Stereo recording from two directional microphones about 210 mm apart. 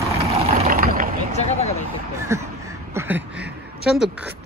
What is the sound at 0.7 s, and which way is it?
Vehicle, 40° right (ahead or behind).